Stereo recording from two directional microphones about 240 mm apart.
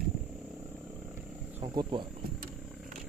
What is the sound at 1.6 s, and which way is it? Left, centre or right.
Speech, centre.